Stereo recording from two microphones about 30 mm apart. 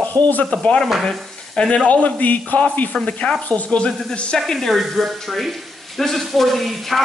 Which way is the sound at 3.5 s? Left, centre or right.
Left.